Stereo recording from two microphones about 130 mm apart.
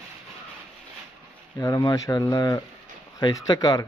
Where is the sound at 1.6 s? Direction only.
25° left (ahead or behind).